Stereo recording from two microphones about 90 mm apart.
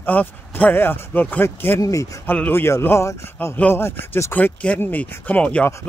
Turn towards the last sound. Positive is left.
turn(degrees=15)  # may be behind; listen again after turning